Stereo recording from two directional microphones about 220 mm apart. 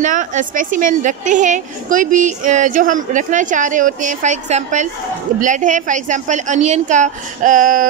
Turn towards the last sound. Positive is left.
turn(degrees=-35)  # may be behind; listen again after turning